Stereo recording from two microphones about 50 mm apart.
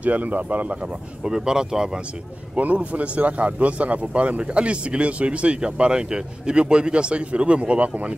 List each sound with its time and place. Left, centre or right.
0.0 s speech: right
1.2 s speech: centre
2.5 s speech: right